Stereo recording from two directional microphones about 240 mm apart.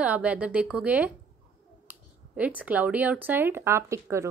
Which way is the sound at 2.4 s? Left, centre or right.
Centre.